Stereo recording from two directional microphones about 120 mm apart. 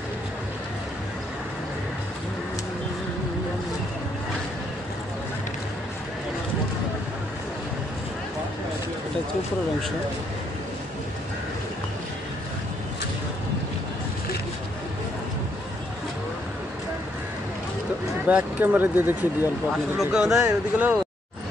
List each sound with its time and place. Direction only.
18.2 s speech: 15° right (ahead or behind)
20.0 s speech: 5° right (ahead or behind)